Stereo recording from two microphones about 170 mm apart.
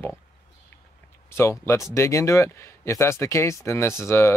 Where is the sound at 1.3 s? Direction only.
15° left (ahead or behind).